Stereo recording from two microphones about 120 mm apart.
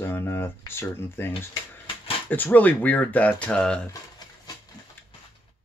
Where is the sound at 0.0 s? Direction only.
20° left (ahead or behind).